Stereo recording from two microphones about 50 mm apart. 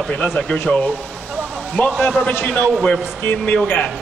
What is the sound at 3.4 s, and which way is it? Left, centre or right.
Speech, left.